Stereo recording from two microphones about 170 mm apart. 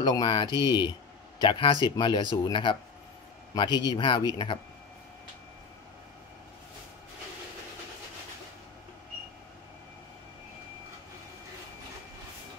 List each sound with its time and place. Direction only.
0.0 s speech: 25° left (ahead or behind)